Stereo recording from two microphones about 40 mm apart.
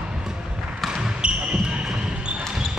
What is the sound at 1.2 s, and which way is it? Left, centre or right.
Basketball bounce, right.